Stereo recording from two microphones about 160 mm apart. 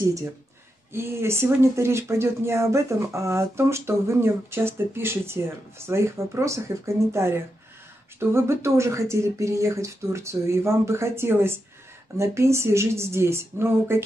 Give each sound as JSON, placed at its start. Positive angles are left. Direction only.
{"t": 0.9, "sound": "speech", "side_deg": -15}